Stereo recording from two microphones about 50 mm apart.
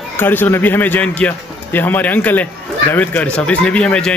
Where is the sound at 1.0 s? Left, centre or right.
Left.